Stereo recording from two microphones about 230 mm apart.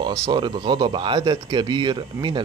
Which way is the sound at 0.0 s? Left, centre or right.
Centre.